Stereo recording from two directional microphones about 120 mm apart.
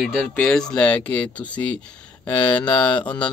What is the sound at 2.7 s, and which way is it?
Speech, 10° left (ahead or behind).